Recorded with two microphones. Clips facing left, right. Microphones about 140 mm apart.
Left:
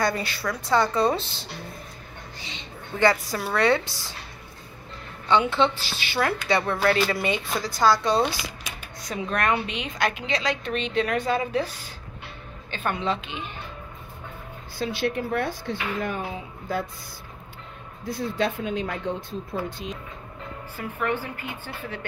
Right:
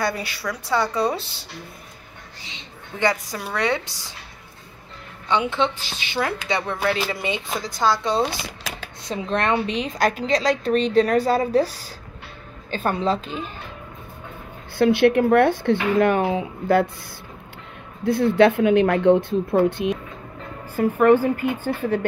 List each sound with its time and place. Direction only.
0.0 s a woman's voice: 10° right (ahead or behind)
3.0 s a woman's voice: 15° right (ahead or behind)
5.3 s speech: 20° right (ahead or behind)
8.5 s a sound: 90° right
9.0 s a woman's voice: 30° right (ahead or behind)
14.8 s speech: 60° right (ahead or behind)
18.0 s speech: 65° right (ahead or behind)
20.7 s a woman's voice: 45° right (ahead or behind)